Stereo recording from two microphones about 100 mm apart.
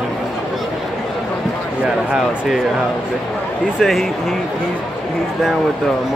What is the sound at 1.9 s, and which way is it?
Speech, 5° right (ahead or behind).